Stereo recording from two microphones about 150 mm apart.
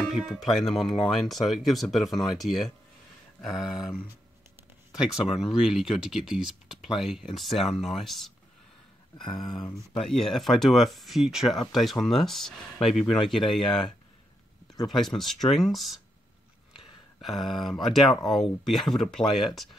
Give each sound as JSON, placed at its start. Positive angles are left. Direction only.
{"t": 0.1, "sound": "speech", "side_deg": 0}
{"t": 5.0, "sound": "speech", "side_deg": 0}
{"t": 9.2, "sound": "speech", "side_deg": 30}
{"t": 10.0, "sound": "speech", "side_deg": 0}
{"t": 17.2, "sound": "speech", "side_deg": 0}